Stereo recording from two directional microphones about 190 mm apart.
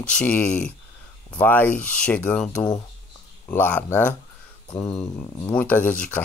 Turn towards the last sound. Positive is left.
turn(degrees=10)  # may be behind; listen again after turning